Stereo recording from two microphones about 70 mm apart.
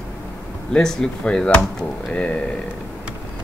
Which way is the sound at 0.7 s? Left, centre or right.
Centre.